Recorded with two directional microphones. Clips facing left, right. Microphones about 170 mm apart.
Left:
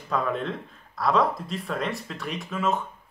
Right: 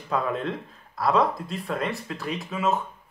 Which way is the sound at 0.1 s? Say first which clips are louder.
Even; centre (ahead or behind).